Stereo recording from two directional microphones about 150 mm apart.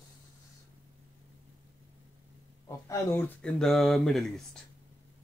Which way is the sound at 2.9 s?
10° left (ahead or behind).